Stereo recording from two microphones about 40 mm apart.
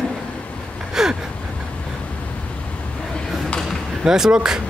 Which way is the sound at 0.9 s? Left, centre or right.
Centre.